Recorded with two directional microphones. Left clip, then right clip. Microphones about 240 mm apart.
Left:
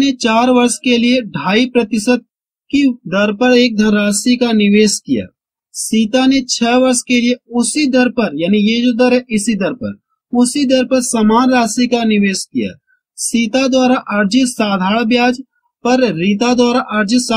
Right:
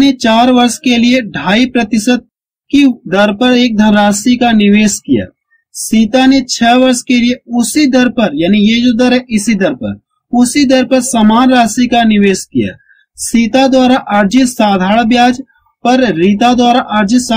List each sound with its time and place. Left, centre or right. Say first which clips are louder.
0.0 s speech: right 4 dB; left
13.3 s speech: right 5 dB; left